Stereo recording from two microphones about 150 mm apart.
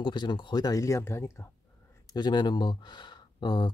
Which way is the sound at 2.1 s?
30° left (ahead or behind).